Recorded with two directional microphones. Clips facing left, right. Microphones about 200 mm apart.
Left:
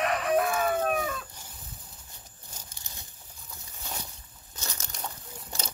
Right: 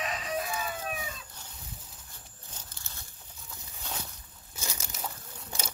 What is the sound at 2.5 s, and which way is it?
Crumpling, 10° left (ahead or behind).